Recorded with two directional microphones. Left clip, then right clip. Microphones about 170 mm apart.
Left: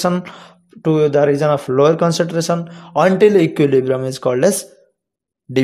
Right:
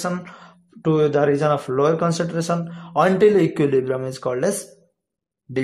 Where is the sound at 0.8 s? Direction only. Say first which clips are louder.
Left 4 dB; 15° left (ahead or behind).